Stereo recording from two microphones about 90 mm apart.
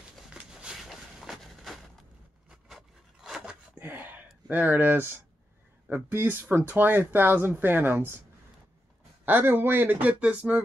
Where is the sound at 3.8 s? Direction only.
20° right (ahead or behind).